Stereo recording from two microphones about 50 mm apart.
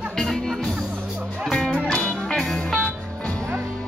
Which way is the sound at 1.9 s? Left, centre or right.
Left.